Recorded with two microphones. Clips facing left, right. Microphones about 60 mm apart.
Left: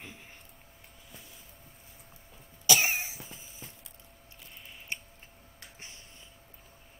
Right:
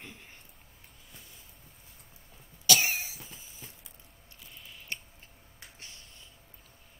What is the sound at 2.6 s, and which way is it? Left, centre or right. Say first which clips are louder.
Cough: left 1 dB; centre.